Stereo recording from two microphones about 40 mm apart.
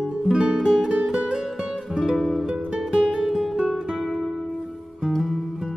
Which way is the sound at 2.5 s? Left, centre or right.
Right.